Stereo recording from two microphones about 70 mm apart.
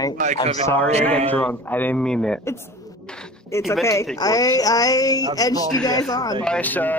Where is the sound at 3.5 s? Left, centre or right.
Left.